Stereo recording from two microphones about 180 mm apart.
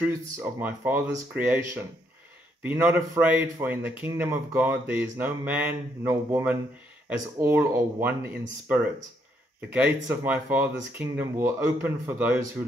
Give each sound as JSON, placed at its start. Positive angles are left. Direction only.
{"t": 0.0, "sound": "speech", "side_deg": -10}
{"t": 2.6, "sound": "speech", "side_deg": -10}